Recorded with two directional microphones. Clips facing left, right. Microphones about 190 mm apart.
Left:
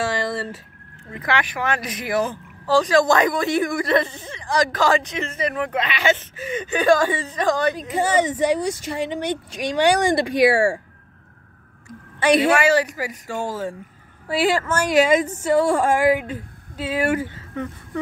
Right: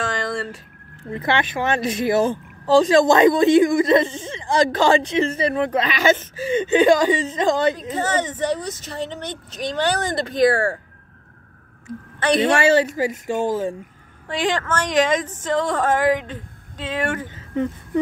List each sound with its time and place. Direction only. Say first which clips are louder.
0.0 s a sound: left 1 dB; 5° left (ahead or behind)
1.1 s a woman's voice: right 3 dB; 25° right (ahead or behind)
7.9 s a woman's voice: left 3 dB; 10° left (ahead or behind)
12.2 s a woman's voice: left 1 dB; 10° left (ahead or behind)
12.5 s a woman's voice: right 2 dB; 25° right (ahead or behind)
14.2 s a woman's voice: left 3 dB; 5° left (ahead or behind)